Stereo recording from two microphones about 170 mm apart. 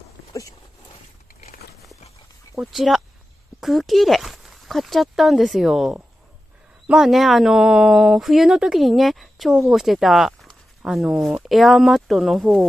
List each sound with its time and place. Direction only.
0.3 s speech: 20° left (ahead or behind)
2.6 s speech: centre (ahead or behind)